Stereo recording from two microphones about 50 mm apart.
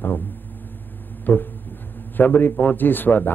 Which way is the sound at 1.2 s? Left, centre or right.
Left.